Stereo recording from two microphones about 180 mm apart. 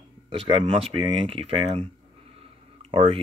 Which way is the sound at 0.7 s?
35° right (ahead or behind).